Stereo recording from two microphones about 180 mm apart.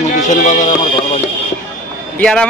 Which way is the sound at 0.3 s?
40° left (ahead or behind).